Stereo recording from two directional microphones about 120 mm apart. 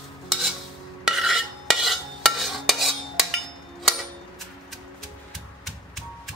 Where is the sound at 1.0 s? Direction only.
Centre (ahead or behind).